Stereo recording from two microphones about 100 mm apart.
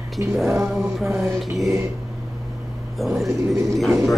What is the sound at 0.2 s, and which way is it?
Mantra, 30° right (ahead or behind).